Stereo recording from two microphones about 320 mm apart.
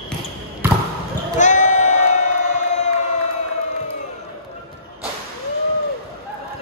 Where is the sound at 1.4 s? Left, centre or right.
Left.